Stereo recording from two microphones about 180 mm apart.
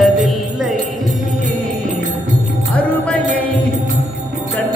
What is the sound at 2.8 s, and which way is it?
Music, 5° left (ahead or behind).